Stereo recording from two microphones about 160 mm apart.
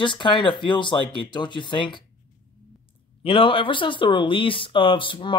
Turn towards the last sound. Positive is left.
turn(degrees=30)  # may be behind; listen again after turning